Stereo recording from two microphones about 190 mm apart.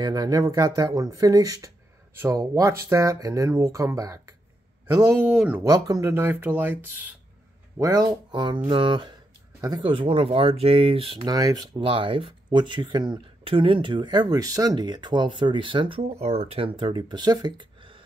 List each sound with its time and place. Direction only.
0.0 s speech: 20° right (ahead or behind); by 5.6 s 5° right (ahead or behind)
5.6 s speech: 15° right (ahead or behind)